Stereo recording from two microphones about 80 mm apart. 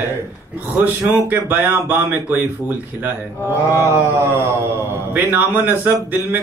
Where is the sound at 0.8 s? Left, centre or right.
Right.